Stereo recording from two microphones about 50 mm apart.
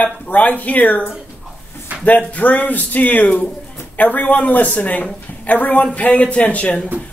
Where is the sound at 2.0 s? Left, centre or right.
Left.